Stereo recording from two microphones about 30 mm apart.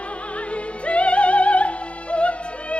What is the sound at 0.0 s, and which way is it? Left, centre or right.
Music, left.